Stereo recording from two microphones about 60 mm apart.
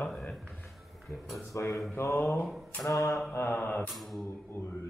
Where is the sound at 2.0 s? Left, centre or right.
Left.